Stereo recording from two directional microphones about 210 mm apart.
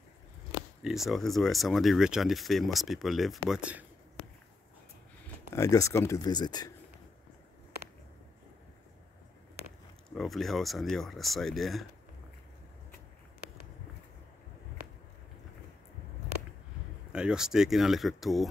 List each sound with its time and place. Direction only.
0.8 s speech: centre (ahead or behind)
5.5 s speech: 15° left (ahead or behind)
10.0 s speech: centre (ahead or behind)
17.1 s speech: 5° right (ahead or behind)